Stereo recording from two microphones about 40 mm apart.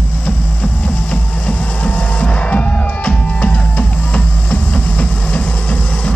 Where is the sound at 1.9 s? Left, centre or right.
Left.